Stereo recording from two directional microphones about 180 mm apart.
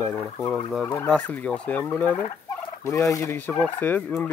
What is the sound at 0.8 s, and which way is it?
Fowl, 5° left (ahead or behind).